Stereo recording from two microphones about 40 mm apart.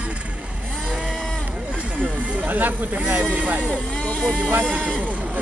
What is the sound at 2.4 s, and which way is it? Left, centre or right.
Speech, right.